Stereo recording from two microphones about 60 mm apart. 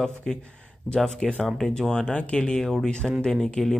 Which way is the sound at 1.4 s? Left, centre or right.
Centre.